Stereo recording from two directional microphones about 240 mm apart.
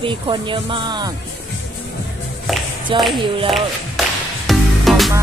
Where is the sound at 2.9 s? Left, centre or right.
Right.